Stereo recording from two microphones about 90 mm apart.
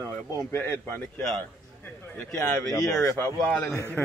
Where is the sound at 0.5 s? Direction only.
25° left (ahead or behind).